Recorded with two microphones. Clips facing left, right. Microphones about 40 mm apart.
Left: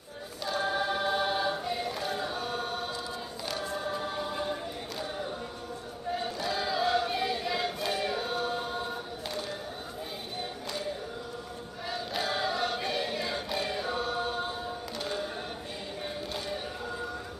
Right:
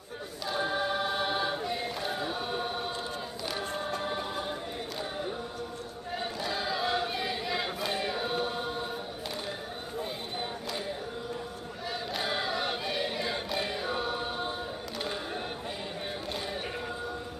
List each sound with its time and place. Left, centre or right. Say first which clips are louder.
0.5 s choir: left 1 dB; centre
4.0 s choir: even; centre
6.4 s choir: left 2 dB; centre
12.2 s choir: left 2 dB; centre